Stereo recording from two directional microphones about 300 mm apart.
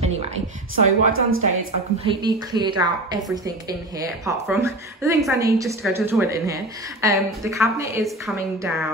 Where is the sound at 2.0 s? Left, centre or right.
Centre.